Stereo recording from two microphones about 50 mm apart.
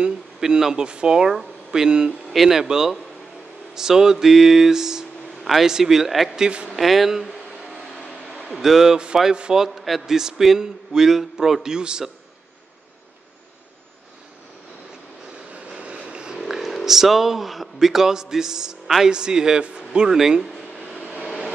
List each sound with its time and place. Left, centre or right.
0.4 s a man's voice: centre
5.4 s a man's voice: centre
6.3 s a man's voice: centre
6.7 s speech: centre
8.5 s a man's voice: centre
15.5 s vehicle: right
16.3 s a man's voice: centre